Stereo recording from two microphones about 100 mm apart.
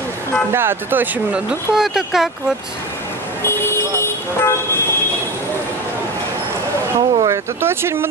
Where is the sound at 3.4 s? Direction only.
25° left (ahead or behind).